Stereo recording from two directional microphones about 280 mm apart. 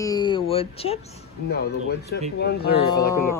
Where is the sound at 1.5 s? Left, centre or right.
Left.